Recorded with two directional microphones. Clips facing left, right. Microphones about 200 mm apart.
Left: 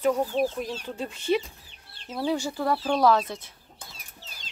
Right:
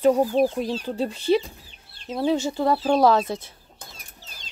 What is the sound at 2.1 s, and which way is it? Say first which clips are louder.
Speech: right 5 dB; 20° right (ahead or behind).